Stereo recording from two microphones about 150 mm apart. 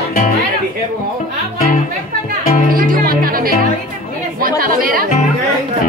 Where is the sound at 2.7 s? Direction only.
70° right (ahead or behind).